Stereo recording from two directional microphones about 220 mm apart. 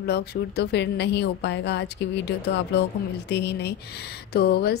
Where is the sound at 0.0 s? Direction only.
45° left (ahead or behind).